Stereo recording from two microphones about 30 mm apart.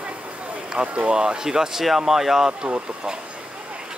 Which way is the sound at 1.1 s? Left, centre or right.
Right.